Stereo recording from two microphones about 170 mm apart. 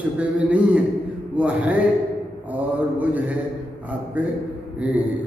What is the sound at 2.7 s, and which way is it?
Speech, 10° right (ahead or behind).